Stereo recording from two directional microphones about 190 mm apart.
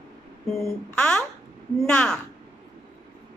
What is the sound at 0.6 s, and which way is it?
Speech, 5° left (ahead or behind).